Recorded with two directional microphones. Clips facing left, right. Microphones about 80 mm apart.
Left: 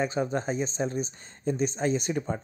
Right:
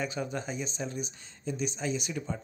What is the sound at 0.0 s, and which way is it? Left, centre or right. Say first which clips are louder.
Speech: left 6 dB; left.